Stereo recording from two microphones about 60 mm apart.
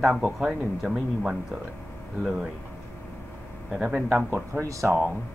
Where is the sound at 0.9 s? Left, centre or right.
Centre.